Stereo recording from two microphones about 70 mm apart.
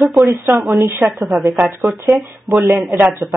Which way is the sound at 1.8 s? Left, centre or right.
Right.